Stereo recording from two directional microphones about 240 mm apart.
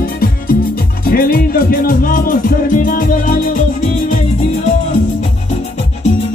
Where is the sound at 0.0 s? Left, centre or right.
Left.